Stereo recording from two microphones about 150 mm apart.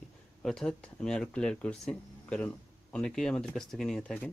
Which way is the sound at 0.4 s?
5° left (ahead or behind).